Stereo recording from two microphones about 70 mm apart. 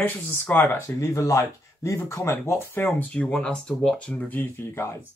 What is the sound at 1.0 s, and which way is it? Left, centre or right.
Speech, left.